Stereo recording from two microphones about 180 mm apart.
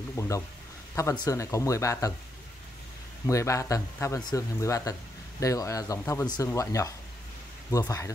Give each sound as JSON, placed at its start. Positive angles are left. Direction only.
{"t": 0.2, "sound": "speech", "side_deg": 15}
{"t": 3.3, "sound": "speech", "side_deg": 15}